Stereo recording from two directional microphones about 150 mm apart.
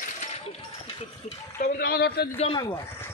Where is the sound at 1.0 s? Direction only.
50° left (ahead or behind).